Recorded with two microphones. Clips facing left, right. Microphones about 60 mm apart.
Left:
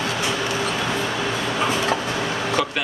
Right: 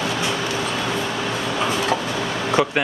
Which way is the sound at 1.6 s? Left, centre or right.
Centre.